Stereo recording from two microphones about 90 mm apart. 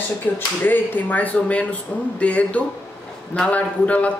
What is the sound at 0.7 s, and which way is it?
Speech, 20° left (ahead or behind).